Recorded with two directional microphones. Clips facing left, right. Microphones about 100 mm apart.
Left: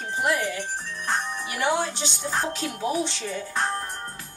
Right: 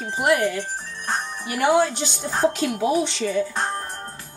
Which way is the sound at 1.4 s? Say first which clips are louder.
Right 8 dB; 55° right (ahead or behind).